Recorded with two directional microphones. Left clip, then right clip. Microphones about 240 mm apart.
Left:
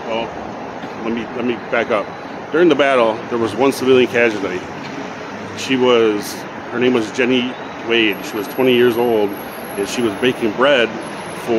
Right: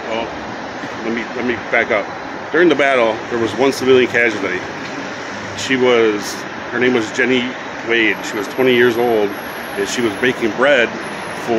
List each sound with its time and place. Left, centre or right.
1.7 s speech: centre
5.7 s speech: centre